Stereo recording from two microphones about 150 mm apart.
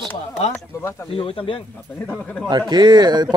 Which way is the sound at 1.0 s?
35° left (ahead or behind).